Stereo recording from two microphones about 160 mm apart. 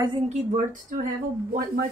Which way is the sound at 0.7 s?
55° right (ahead or behind).